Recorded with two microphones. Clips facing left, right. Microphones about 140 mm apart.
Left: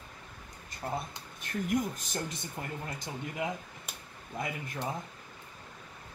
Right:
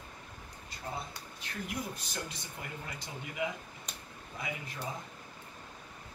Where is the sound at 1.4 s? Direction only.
50° left (ahead or behind).